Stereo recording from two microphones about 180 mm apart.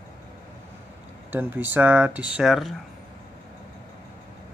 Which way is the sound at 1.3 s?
10° right (ahead or behind).